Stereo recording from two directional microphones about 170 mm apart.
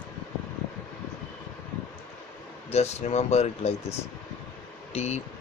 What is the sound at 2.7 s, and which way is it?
Speech, 40° left (ahead or behind).